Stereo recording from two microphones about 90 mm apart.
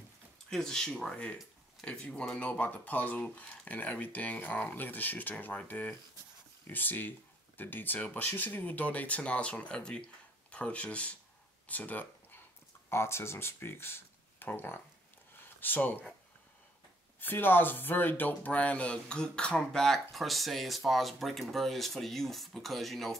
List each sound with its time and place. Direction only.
0.5 s speech: 5° left (ahead or behind)
11.6 s a sound: 15° left (ahead or behind)
12.9 s speech: 30° left (ahead or behind)
17.2 s speech: 20° left (ahead or behind); by 23.1 s centre (ahead or behind)